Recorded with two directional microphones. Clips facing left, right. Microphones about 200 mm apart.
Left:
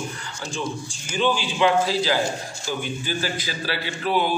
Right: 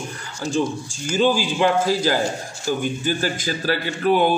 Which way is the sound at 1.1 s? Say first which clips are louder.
Right 4 dB; 45° right (ahead or behind).